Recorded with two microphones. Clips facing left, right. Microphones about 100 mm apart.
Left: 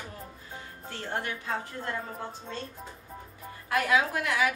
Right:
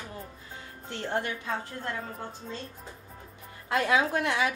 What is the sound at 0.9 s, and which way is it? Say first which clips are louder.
Speech: right 3 dB; 20° right (ahead or behind).